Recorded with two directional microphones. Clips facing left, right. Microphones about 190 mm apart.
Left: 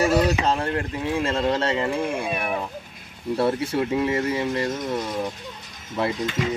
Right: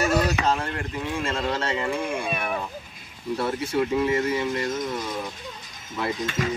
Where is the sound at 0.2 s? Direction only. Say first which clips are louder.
Left 2 dB; 30° left (ahead or behind).